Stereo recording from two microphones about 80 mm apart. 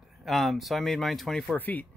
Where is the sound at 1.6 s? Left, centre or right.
Left.